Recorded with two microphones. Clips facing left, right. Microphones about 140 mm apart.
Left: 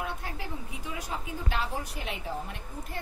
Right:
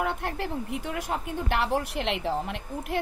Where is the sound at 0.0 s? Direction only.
65° right (ahead or behind).